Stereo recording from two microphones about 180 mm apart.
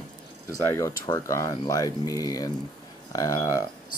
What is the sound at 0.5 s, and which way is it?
Speech, 15° left (ahead or behind).